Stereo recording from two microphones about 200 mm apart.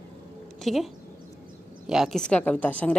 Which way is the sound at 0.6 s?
Centre (ahead or behind).